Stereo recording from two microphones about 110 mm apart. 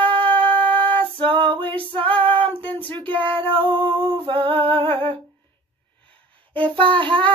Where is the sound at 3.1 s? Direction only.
15° left (ahead or behind).